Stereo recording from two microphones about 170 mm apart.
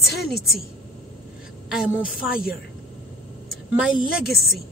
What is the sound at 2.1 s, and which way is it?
Speech, 60° left (ahead or behind).